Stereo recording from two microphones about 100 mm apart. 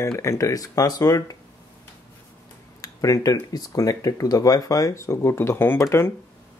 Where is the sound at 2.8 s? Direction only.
35° left (ahead or behind).